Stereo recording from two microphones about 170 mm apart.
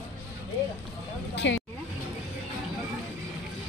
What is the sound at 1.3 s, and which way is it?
Vehicle, 90° left.